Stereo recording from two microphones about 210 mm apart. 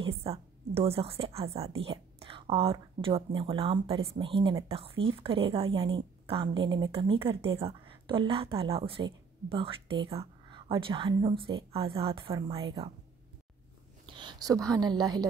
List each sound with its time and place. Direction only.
0.0 s a woman's voice: 25° right (ahead or behind)
14.0 s a woman's voice: 20° right (ahead or behind)